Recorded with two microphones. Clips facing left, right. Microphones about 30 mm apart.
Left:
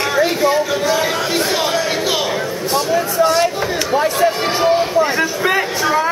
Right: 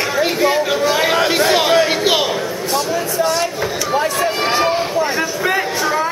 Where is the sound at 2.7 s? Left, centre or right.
Centre.